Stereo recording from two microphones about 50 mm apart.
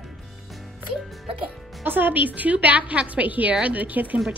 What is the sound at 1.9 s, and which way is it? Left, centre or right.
Speech, right.